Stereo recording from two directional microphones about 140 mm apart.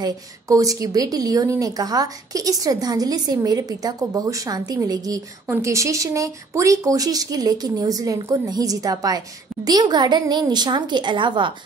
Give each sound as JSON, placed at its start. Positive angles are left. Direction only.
{"t": 0.0, "sound": "a woman's voice", "side_deg": -25}